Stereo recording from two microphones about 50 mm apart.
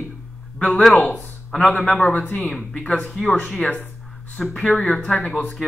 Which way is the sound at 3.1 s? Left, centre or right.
Centre.